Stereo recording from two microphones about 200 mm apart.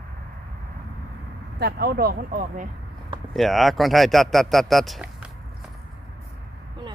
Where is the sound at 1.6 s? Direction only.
55° right (ahead or behind).